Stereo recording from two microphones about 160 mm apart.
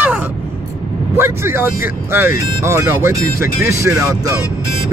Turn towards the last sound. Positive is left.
turn(degrees=-15)  # may be behind; listen again after turning